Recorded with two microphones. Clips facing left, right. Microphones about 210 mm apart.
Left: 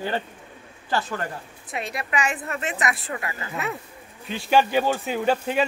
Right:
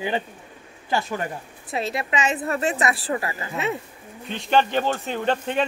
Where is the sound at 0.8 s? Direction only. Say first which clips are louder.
Right 1 dB; 15° right (ahead or behind).